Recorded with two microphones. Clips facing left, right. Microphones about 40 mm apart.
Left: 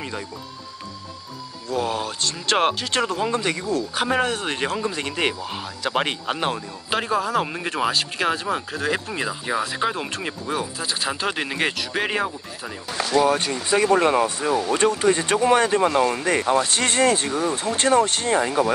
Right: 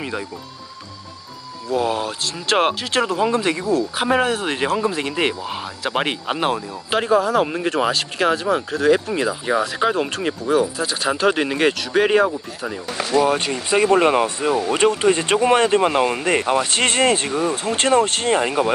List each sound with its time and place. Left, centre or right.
1.7 s speech: centre
13.9 s speech: right
16.2 s speech: right
16.7 s speech: right
17.0 s speech: right
18.0 s speech: right
18.3 s speech: right